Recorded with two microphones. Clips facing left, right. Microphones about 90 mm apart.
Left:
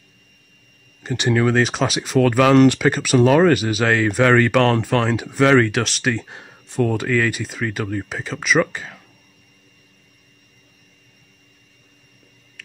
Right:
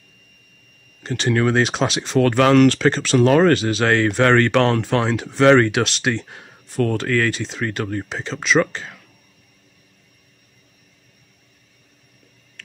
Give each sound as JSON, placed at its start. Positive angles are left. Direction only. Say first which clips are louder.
{"t": 1.1, "sound": "speech", "louder": "left 1 dB", "side_deg": 15}
{"t": 1.4, "sound": "speech", "louder": "even", "side_deg": 0}
{"t": 12.6, "sound": "a sound", "louder": "even", "side_deg": 10}